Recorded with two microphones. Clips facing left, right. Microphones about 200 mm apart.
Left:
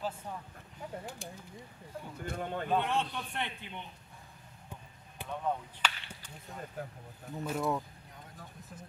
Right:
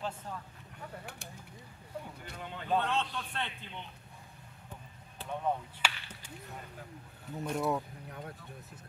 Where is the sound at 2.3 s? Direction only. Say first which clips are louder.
Left 7 dB; 50° left (ahead or behind).